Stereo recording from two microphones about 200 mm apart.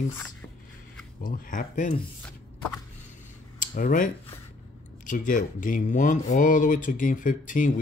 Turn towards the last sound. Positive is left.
turn(degrees=40)  # may be behind; listen again after turning